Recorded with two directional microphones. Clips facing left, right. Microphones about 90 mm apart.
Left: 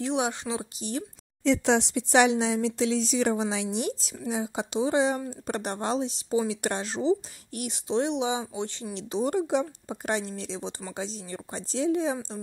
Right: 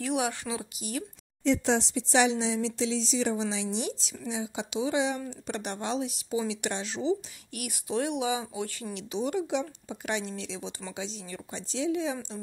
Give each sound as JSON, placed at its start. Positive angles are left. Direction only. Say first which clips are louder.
{"t": 0.0, "sound": "speech", "louder": "left 2 dB", "side_deg": 25}
{"t": 1.4, "sound": "speech", "louder": "left 3 dB", "side_deg": 80}
{"t": 8.9, "sound": "speech", "louder": "left 4 dB", "side_deg": 35}